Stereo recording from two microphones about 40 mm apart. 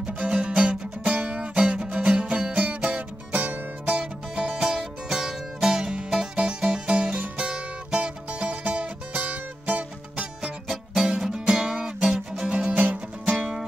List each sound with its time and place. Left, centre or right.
0.3 s music: right
4.0 s music: centre; by 9.8 s right
10.1 s music: centre
12.4 s music: right